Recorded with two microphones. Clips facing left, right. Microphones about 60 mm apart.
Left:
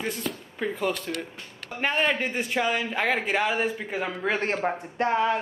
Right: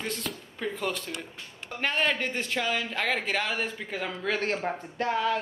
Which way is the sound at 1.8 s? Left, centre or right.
Centre.